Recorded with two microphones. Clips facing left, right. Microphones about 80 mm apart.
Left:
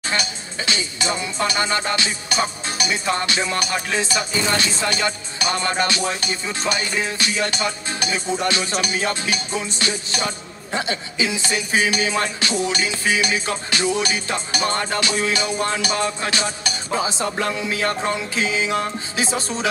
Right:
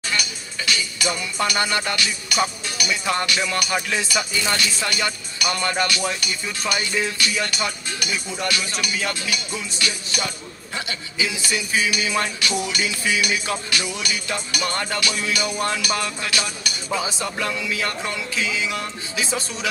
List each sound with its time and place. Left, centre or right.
0.1 s music: left